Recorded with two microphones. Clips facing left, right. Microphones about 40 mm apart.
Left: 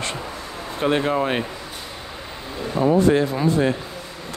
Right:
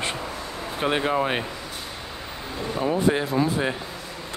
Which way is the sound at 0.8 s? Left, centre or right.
Centre.